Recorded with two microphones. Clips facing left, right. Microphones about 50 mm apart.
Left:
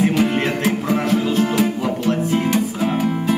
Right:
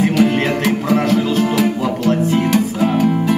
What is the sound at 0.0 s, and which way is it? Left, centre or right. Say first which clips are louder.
Music: right 3 dB; right.